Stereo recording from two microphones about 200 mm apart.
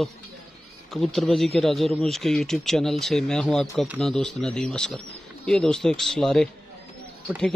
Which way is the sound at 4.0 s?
5° left (ahead or behind).